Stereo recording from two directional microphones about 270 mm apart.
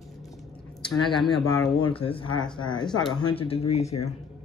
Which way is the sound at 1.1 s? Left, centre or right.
Centre.